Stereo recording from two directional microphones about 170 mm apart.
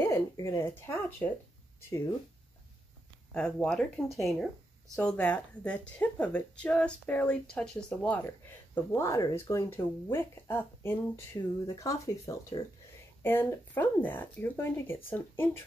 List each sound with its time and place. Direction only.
0.0 s speech: 15° left (ahead or behind)
3.3 s speech: 5° left (ahead or behind)